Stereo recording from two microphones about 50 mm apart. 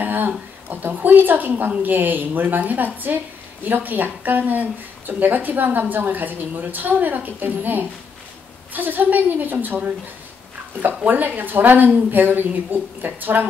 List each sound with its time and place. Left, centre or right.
0.0 s a sound: right
0.9 s a woman's voice: right
11.1 s a woman's voice: right